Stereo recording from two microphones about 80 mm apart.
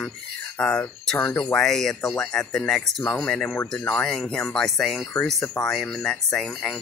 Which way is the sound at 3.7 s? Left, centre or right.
Left.